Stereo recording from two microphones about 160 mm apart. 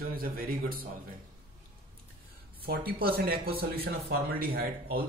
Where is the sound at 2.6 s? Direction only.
70° right (ahead or behind).